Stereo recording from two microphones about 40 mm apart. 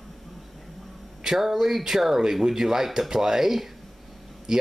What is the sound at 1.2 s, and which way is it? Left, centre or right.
Speech, centre.